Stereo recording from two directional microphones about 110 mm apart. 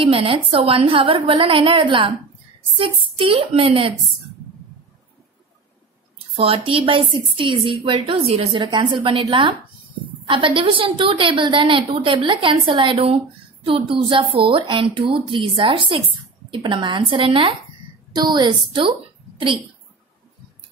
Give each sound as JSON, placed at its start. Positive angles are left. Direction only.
{"t": 0.0, "sound": "a woman's voice", "side_deg": -55}
{"t": 6.3, "sound": "a woman's voice", "side_deg": -55}
{"t": 12.9, "sound": "a woman's voice", "side_deg": -60}
{"t": 18.1, "sound": "a woman's voice", "side_deg": -40}